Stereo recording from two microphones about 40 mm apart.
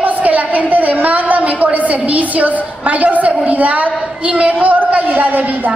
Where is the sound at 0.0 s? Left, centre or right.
Right.